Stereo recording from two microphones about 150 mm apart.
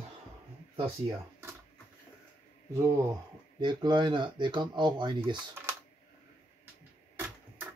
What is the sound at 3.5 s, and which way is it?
Speech, 30° right (ahead or behind).